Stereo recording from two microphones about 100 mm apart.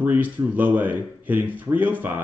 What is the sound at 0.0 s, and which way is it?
Speech, 15° right (ahead or behind).